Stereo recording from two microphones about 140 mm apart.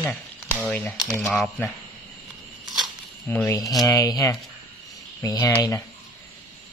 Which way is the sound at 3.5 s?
25° left (ahead or behind).